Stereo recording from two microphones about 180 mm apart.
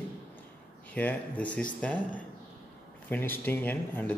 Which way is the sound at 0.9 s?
10° left (ahead or behind).